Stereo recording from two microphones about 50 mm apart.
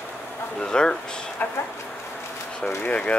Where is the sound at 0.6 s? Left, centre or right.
Centre.